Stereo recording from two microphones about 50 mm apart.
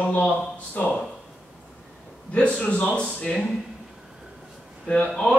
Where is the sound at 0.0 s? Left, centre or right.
Left.